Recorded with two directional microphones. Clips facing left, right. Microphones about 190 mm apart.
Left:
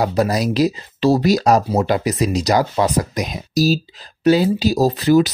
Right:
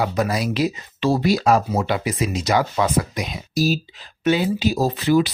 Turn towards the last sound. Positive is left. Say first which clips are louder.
# left 4 dB
turn(degrees=40)  # may be behind; listen again after turning